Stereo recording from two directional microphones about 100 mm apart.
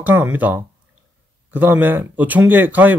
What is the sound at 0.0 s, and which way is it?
Speech, 20° right (ahead or behind).